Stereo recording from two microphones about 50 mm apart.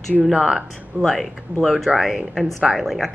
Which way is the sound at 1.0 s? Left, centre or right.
Centre.